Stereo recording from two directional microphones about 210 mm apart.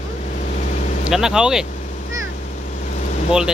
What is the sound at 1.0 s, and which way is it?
Speech, 5° right (ahead or behind).